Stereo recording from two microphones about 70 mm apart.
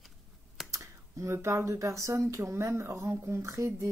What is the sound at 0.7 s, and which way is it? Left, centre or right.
Speech, right.